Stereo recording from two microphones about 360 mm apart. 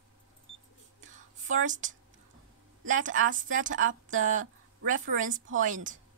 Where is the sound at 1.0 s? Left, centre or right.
Right.